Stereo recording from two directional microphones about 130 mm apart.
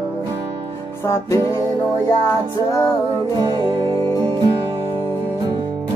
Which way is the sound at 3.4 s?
35° right (ahead or behind).